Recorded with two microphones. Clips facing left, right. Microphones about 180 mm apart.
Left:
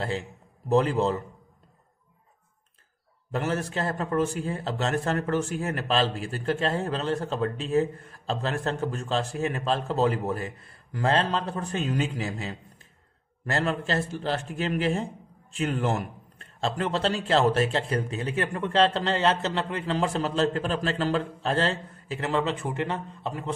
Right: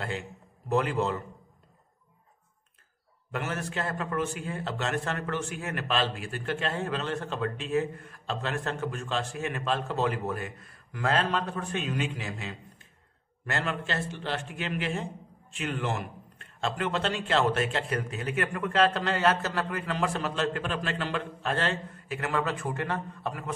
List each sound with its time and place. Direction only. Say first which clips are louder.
0.7 s a man's voice: left 4 dB; 35° left (ahead or behind)
3.3 s a man's voice: left 5 dB; 35° left (ahead or behind)